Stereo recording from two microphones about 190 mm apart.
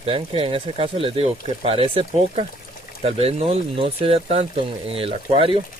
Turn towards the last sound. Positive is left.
turn(degrees=-30)  # may be behind; listen again after turning